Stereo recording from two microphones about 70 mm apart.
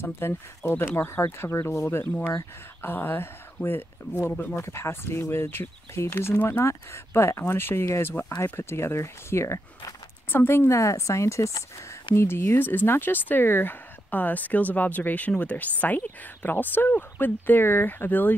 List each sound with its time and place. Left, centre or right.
0.0 s speech: left
6.6 s speech: left
10.3 s speech: left
10.7 s speech: left